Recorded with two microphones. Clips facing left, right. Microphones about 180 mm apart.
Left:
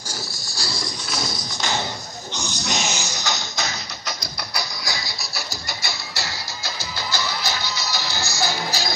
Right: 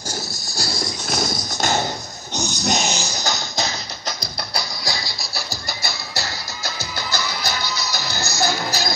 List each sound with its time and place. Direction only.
0.6 s music: 45° right (ahead or behind)
2.3 s pig: 40° right (ahead or behind)
4.8 s music: 35° right (ahead or behind)